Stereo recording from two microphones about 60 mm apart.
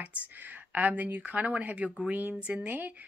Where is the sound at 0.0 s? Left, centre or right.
Right.